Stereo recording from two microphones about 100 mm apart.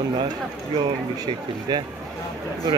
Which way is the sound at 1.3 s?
45° right (ahead or behind).